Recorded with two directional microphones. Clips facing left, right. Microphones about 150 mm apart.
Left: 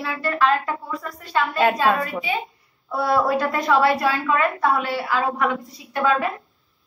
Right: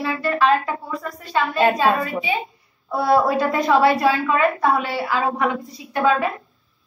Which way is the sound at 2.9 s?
20° right (ahead or behind).